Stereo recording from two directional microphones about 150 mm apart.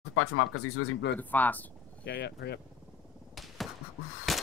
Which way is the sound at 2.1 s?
90° left.